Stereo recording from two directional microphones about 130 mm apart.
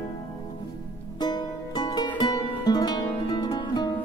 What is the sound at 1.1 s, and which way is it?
Music, 30° left (ahead or behind).